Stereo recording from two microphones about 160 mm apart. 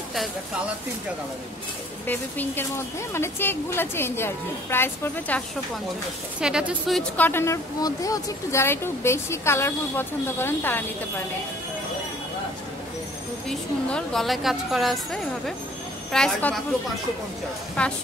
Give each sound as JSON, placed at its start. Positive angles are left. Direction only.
{"t": 2.0, "sound": "a woman's voice", "side_deg": 10}
{"t": 6.4, "sound": "a woman's voice", "side_deg": -5}
{"t": 13.5, "sound": "a woman's voice", "side_deg": 5}
{"t": 16.1, "sound": "a woman's voice", "side_deg": 5}
{"t": 17.8, "sound": "a woman's voice", "side_deg": 10}